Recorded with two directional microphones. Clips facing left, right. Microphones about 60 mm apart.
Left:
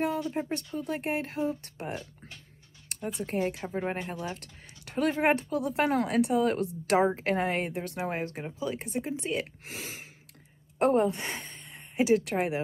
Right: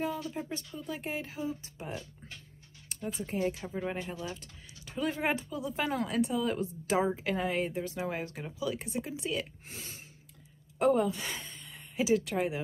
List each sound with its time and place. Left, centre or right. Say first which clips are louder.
0.2 s speech: left 6 dB; left
0.7 s a woman's voice: left 6 dB; left
2.9 s a sound: left 3 dB; left
3.3 s speech: left 2 dB; left
3.5 s speech: left 3 dB; left
4.4 s a woman's voice: left 2 dB; left
10.8 s a sound: left 2 dB; left
12.0 s speech: left 3 dB; left